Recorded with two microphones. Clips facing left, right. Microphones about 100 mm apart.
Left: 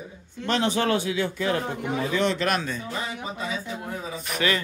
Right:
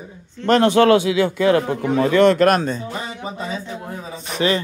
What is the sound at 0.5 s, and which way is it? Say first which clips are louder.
A man's voice: right 10 dB; 60° right (ahead or behind).